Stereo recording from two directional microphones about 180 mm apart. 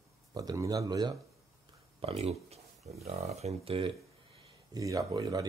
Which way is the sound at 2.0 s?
35° right (ahead or behind).